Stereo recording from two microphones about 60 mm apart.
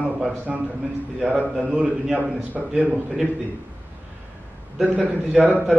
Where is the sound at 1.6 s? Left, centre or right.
Centre.